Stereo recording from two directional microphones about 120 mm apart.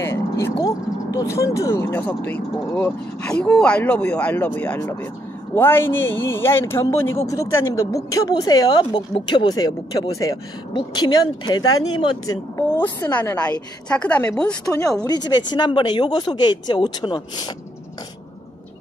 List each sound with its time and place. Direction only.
0.0 s vehicle: 25° left (ahead or behind)
0.7 s a woman's voice: 25° left (ahead or behind)
10.7 s speech: 40° left (ahead or behind)
13.0 s speech: 15° left (ahead or behind)
14.7 s speech: 30° left (ahead or behind)